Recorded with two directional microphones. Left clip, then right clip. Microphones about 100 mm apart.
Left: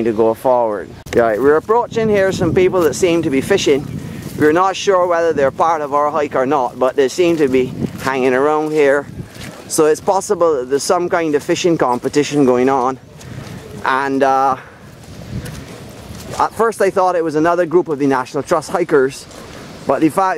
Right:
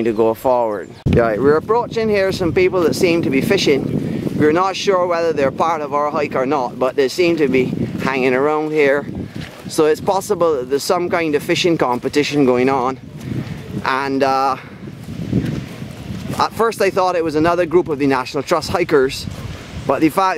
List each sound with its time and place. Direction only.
0.0 s speech: 25° right (ahead or behind)
13.8 s speech: 30° right (ahead or behind)
14.2 s speech: 15° right (ahead or behind)
16.4 s speech: 45° right (ahead or behind)
17.3 s speech: 20° right (ahead or behind)
17.6 s speech: 30° right (ahead or behind)
18.4 s speech: 15° right (ahead or behind)
18.9 s speech: 25° right (ahead or behind)